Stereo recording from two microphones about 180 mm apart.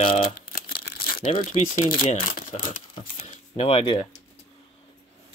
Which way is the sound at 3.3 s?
35° left (ahead or behind).